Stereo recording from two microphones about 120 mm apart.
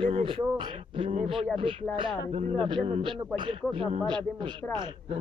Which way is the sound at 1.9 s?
45° right (ahead or behind).